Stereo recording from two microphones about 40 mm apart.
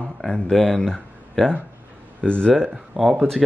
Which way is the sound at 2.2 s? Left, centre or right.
Left.